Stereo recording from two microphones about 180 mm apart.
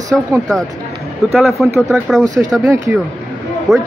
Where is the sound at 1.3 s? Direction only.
Centre (ahead or behind).